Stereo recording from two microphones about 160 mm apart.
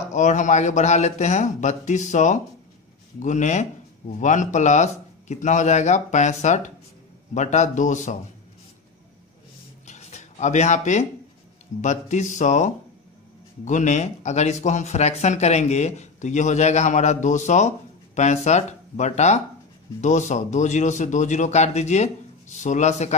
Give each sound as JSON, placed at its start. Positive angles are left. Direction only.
{"t": 0.1, "sound": "speech", "side_deg": 50}
{"t": 9.8, "sound": "a sound", "side_deg": 45}
{"t": 11.8, "sound": "speech", "side_deg": 50}